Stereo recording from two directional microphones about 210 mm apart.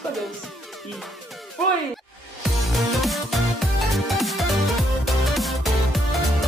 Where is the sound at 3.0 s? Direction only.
Centre (ahead or behind).